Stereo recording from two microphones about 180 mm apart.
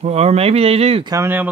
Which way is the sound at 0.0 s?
35° right (ahead or behind).